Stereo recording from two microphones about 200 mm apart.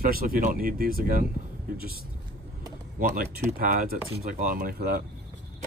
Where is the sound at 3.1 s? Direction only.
50° right (ahead or behind).